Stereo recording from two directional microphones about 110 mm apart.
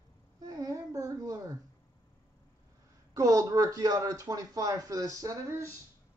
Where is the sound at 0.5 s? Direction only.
30° right (ahead or behind).